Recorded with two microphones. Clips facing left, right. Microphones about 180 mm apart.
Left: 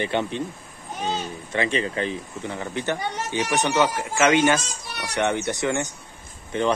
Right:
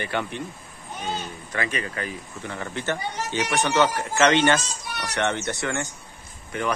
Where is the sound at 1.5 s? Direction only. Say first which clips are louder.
Left 5 dB; 25° left (ahead or behind).